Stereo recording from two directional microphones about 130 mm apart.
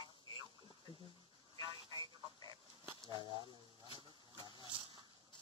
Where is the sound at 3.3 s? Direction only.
40° left (ahead or behind).